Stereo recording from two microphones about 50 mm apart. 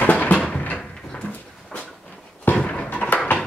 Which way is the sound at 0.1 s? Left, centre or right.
Left.